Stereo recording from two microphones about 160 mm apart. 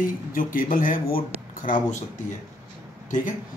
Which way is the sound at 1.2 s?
30° left (ahead or behind).